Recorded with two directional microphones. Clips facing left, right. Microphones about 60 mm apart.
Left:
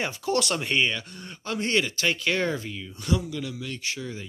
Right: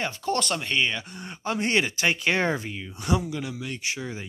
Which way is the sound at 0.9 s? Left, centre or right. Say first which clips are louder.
Right 1 dB; centre.